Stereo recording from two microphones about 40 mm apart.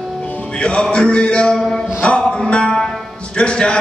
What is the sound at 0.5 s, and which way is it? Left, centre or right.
Music, left.